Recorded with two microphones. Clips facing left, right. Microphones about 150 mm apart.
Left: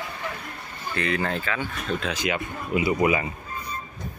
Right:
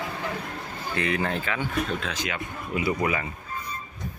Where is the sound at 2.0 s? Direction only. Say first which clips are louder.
Left 4 dB; 15° left (ahead or behind).